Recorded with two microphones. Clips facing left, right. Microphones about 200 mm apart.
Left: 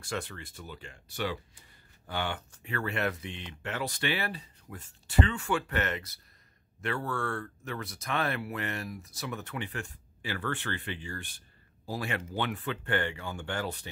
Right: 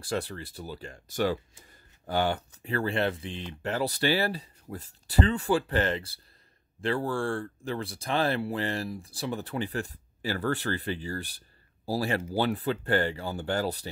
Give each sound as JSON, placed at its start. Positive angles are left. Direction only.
{"t": 0.0, "sound": "speech", "side_deg": -35}